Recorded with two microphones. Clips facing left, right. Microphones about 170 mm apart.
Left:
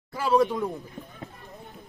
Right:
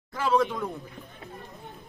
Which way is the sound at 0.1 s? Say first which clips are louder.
Left 2 dB; 10° left (ahead or behind).